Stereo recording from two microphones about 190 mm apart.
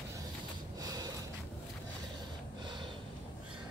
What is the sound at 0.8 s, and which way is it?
Snort, 20° right (ahead or behind).